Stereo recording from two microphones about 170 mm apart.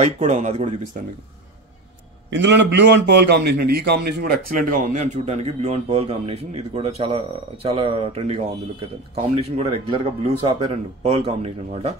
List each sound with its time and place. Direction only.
0.0 s a man's voice: 40° right (ahead or behind)
2.3 s a man's voice: 90° right; by 4.7 s 60° right (ahead or behind)
5.0 s a man's voice: 40° right (ahead or behind)